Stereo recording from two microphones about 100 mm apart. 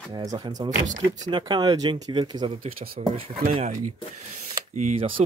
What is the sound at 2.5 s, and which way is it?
Speech, 75° right (ahead or behind).